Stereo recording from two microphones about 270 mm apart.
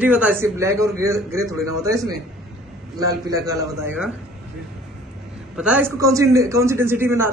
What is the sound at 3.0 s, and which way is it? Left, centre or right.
A man's voice, centre.